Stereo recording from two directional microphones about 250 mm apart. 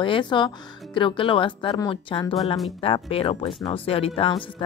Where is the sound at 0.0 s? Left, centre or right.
Centre.